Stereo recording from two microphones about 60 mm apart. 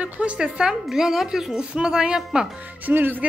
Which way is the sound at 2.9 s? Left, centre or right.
Right.